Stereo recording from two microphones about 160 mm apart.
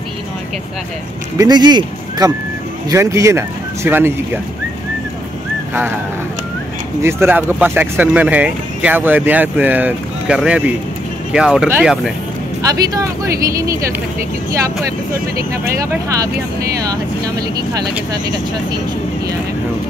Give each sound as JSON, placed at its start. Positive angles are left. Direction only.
{"t": 1.4, "sound": "speech", "side_deg": -25}
{"t": 7.0, "sound": "speech", "side_deg": -15}
{"t": 12.6, "sound": "speech", "side_deg": -20}
{"t": 15.9, "sound": "speech", "side_deg": -20}